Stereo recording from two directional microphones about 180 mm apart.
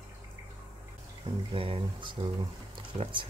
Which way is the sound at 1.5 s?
30° right (ahead or behind).